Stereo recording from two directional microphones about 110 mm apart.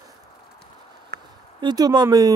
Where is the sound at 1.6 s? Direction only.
40° right (ahead or behind).